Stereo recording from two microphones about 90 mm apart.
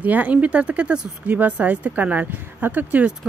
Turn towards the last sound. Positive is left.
turn(degrees=-20)  # may be behind; listen again after turning